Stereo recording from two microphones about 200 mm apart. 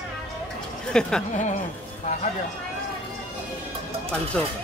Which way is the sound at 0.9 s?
5° left (ahead or behind).